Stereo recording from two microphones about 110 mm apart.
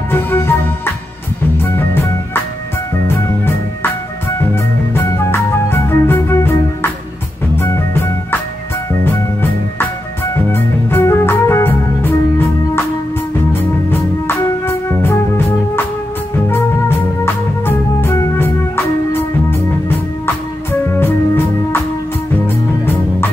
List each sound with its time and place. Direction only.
0.1 s music: 20° left (ahead or behind)
1.6 s music: 20° left (ahead or behind)
4.9 s music: 25° left (ahead or behind)
16.4 s music: 20° left (ahead or behind)